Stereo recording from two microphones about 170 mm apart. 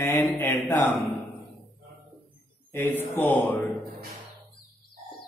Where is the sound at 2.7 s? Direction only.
10° left (ahead or behind).